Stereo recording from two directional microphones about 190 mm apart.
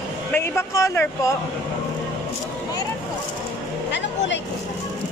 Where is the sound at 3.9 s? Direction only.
70° left (ahead or behind).